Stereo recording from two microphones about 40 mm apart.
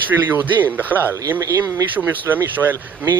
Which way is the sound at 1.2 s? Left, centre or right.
Right.